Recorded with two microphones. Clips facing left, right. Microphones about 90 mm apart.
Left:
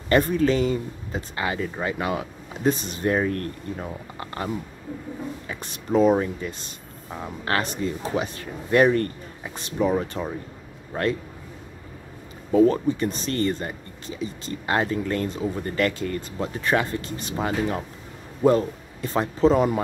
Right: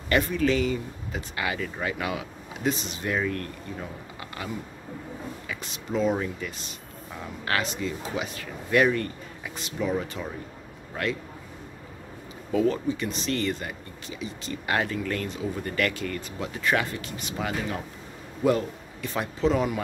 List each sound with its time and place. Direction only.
0.1 s speech: 35° left (ahead or behind)
5.5 s speech: 45° left (ahead or behind)
6.1 s speech: 30° left (ahead or behind)
12.5 s speech: 40° left (ahead or behind)